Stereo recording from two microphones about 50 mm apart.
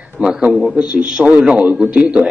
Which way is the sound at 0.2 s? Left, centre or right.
Centre.